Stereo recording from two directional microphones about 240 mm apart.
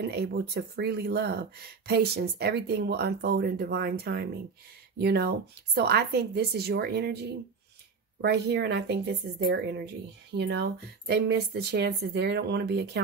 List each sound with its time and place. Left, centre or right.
0.0 s speech: right